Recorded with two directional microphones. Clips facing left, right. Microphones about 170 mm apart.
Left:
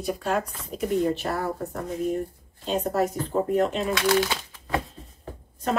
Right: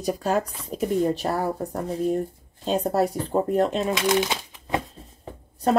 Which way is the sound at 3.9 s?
20° right (ahead or behind).